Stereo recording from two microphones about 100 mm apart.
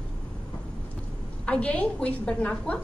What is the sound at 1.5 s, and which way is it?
A woman's voice, 15° left (ahead or behind).